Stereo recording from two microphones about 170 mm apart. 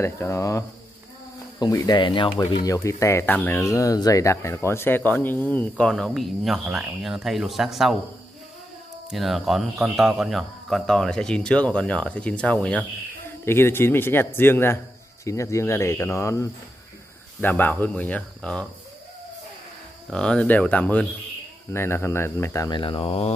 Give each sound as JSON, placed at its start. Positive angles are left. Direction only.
{"t": 0.0, "sound": "speech", "side_deg": 15}
{"t": 9.1, "sound": "speech", "side_deg": 0}
{"t": 20.1, "sound": "speech", "side_deg": 5}